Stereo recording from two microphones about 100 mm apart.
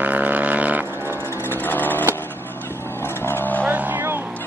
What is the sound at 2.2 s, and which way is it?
Vehicle, 20° left (ahead or behind).